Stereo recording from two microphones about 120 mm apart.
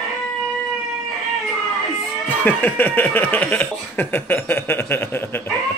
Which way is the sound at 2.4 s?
15° left (ahead or behind).